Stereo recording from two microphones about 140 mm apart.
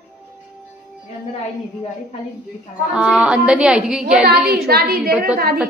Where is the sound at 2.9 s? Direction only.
5° right (ahead or behind).